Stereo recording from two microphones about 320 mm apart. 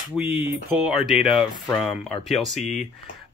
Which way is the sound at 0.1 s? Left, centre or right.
Centre.